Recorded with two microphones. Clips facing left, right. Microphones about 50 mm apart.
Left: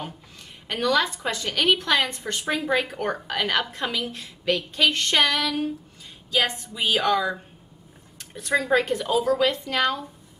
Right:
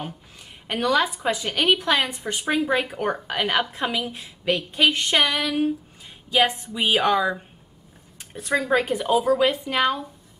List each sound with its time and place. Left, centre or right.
0.7 s a woman's voice: centre